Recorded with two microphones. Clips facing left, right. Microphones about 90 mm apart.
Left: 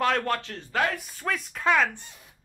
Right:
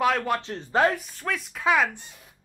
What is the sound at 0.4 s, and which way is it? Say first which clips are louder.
Speech: right 5 dB; 30° right (ahead or behind).